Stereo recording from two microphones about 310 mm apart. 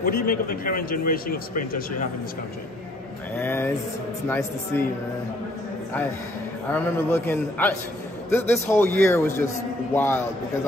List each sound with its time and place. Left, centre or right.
0.0 s a man's voice: left
3.3 s a man's voice: centre
6.7 s a man's voice: centre